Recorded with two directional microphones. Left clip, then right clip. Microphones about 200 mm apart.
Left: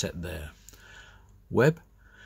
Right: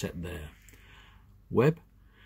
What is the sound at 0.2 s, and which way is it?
Speech, 10° left (ahead or behind).